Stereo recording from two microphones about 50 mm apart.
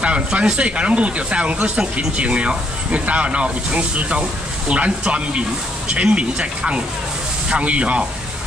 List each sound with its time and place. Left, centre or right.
0.0 s speech: right